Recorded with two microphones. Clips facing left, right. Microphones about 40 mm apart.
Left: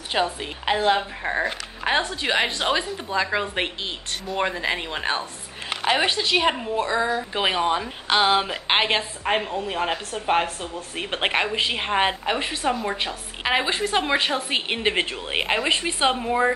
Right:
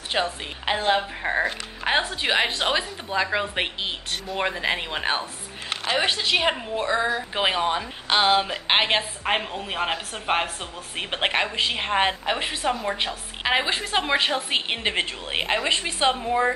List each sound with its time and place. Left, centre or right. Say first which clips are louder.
0.1 s a woman's voice: left 2 dB; centre
11.1 s a woman's voice: left 1 dB; centre